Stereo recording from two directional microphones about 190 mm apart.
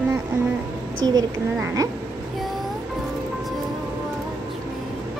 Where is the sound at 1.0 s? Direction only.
20° right (ahead or behind).